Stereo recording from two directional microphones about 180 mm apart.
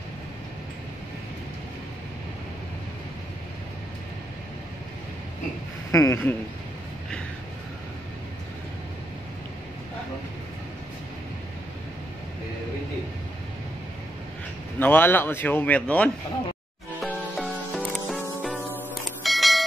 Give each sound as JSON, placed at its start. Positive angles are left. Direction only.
{"t": 5.9, "sound": "a man's voice", "side_deg": 15}
{"t": 14.8, "sound": "a man's voice", "side_deg": 10}
{"t": 17.0, "sound": "music", "side_deg": 0}
{"t": 19.2, "sound": "a sound", "side_deg": 0}